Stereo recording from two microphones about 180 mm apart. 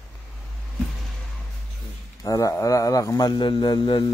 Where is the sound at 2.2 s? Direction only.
20° left (ahead or behind).